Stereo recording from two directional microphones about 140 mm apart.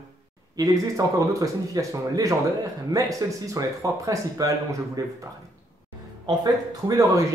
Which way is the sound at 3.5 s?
25° right (ahead or behind).